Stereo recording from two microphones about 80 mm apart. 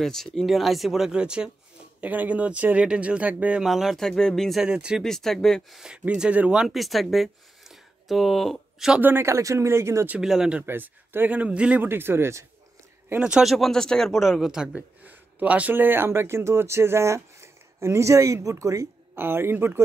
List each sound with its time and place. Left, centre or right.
0.0 s speech: centre
3.6 s speech: centre
4.6 s speech: centre
5.0 s speech: centre
6.0 s speech: centre
6.6 s speech: centre
9.0 s a woman's voice: right
10.2 s speech: centre
10.6 s a man's voice: right
11.8 s a man's voice: right
13.2 s a man's voice: centre; by 18.9 s right
19.1 s a man's voice: right